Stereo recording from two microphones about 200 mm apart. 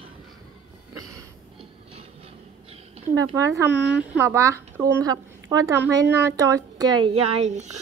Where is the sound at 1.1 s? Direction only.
15° right (ahead or behind).